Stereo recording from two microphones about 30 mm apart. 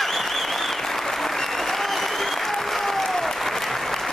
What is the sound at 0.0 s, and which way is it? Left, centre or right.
Applause, centre.